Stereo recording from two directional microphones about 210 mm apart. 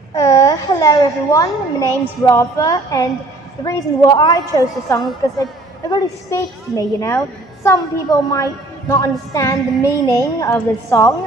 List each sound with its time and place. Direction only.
0.1 s a woman's voice: 15° left (ahead or behind)